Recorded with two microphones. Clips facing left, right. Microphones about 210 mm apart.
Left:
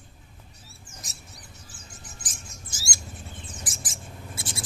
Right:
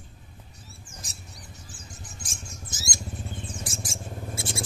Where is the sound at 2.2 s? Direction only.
20° right (ahead or behind).